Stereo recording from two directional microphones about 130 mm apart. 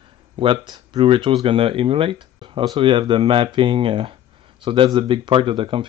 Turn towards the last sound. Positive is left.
turn(degrees=-40)  # may be behind; listen again after turning